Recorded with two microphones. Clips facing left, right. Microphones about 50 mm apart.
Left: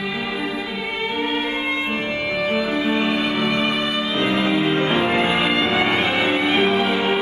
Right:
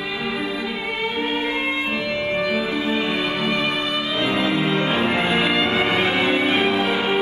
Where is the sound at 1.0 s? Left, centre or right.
Left.